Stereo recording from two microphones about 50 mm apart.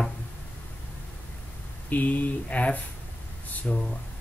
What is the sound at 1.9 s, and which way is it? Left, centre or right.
Speech, left.